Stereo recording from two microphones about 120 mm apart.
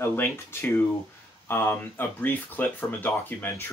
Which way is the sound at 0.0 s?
20° left (ahead or behind).